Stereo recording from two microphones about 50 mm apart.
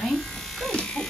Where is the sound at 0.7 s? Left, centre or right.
Left.